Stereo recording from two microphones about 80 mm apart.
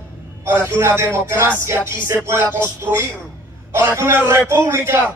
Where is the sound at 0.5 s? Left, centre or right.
Right.